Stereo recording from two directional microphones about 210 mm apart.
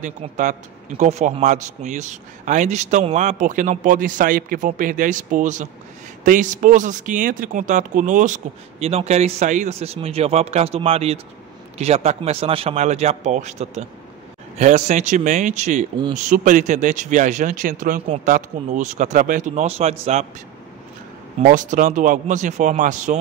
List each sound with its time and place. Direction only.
0.0 s a man's voice: 35° right (ahead or behind)
21.4 s a man's voice: 40° right (ahead or behind)